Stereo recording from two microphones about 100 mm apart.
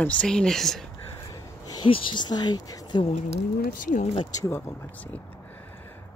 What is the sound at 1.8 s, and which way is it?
Speech, 55° left (ahead or behind).